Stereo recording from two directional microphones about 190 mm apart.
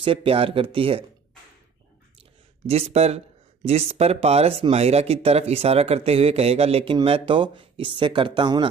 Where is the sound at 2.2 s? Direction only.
35° right (ahead or behind).